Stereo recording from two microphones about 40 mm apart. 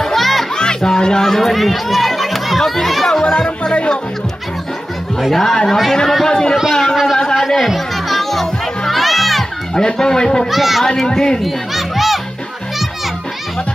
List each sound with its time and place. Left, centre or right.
0.0 s music: centre
0.7 s speech: centre
1.4 s speech: centre
3.3 s speech: left
5.3 s speech: centre
6.7 s a sound: centre
7.3 s music: centre
9.8 s speech: centre
10.5 s speech: centre
10.9 s speech: centre
11.4 s children playing: centre